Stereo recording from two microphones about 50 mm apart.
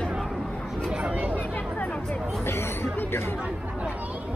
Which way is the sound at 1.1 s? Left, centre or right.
Right.